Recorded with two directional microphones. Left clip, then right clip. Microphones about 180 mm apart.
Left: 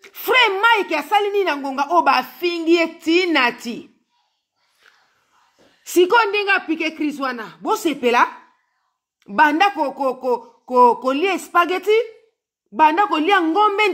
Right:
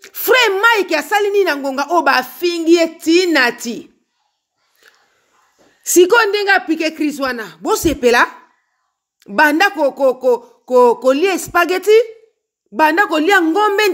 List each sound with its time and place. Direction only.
0.0 s a woman's voice: 15° right (ahead or behind)
5.9 s a woman's voice: 15° right (ahead or behind)